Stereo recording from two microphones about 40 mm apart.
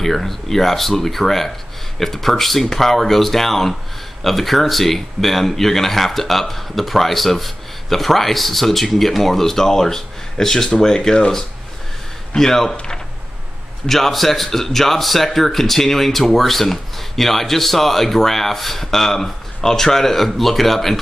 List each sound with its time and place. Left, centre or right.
0.0 s speech: centre
11.0 s speech: left
12.4 s speech: centre
13.8 s speech: centre